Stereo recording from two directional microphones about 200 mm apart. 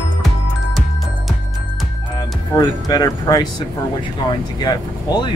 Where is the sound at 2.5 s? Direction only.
20° left (ahead or behind).